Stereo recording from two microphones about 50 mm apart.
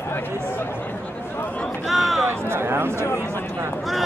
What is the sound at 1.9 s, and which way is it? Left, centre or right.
Speech, centre.